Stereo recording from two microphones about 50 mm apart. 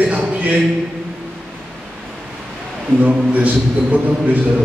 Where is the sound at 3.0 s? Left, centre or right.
Right.